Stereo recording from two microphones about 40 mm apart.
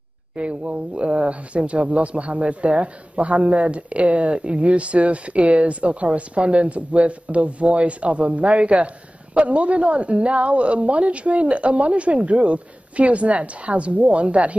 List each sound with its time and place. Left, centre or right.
0.4 s speech: right